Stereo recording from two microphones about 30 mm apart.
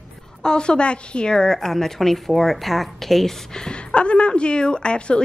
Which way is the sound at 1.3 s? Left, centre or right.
Centre.